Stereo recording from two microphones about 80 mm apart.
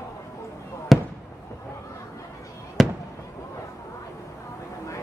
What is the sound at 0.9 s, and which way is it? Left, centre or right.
Fireworks, centre.